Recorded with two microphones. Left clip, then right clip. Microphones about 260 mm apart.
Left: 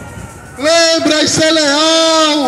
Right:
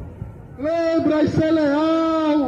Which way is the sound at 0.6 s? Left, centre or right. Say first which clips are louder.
Left 10 dB; left.